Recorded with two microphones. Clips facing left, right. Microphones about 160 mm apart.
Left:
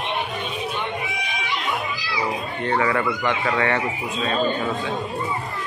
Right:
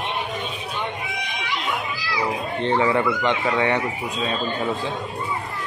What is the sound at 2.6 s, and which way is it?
Speech, 20° right (ahead or behind).